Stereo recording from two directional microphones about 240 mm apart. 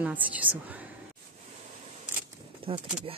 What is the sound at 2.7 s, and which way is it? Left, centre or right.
Speech, right.